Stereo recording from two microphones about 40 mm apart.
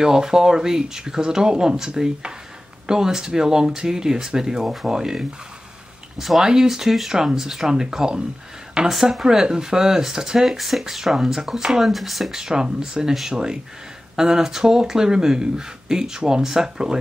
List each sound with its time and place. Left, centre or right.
0.0 s speech: centre
12.4 s speech: centre